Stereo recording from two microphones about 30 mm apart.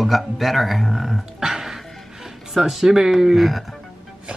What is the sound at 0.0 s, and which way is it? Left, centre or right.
Speech, centre.